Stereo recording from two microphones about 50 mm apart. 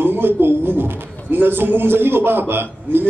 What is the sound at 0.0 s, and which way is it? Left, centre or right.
A man's voice, right.